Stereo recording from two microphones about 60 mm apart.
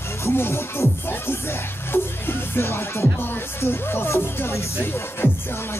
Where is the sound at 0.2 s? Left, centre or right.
Left.